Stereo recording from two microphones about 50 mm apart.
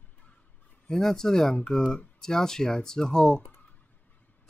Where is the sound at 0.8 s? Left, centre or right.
Centre.